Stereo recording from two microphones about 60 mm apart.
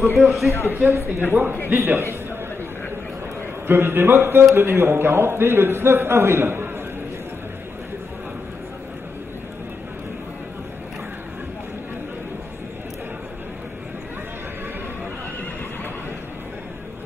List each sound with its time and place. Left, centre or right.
0.2 s a man's voice: centre
0.5 s a man's voice: left
0.9 s a man's voice: right
1.3 s a man's voice: right
1.7 s a man's voice: right
3.6 s a man's voice: right